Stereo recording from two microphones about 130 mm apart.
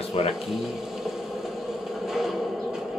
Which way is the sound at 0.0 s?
50° left (ahead or behind).